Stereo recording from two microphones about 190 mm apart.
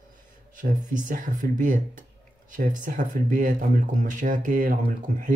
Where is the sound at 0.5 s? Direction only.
45° right (ahead or behind).